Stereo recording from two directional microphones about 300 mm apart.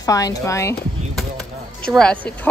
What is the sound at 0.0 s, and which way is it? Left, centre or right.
Speech, centre.